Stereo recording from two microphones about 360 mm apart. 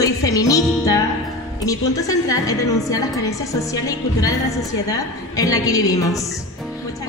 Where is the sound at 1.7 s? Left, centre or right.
Centre.